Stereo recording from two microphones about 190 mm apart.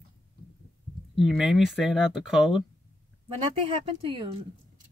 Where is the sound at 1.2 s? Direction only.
Centre (ahead or behind).